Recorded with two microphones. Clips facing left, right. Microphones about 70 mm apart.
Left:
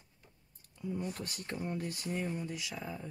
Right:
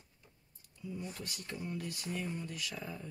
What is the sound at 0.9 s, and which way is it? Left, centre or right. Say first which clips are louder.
Speech: left 4 dB; left.